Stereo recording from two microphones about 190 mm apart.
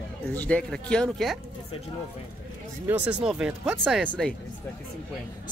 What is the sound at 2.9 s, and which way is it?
Speech, 5° right (ahead or behind).